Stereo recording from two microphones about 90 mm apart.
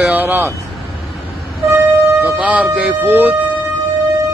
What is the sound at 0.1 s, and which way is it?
Speech, 20° right (ahead or behind).